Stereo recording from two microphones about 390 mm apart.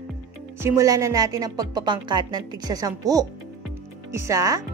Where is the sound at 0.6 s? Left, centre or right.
Centre.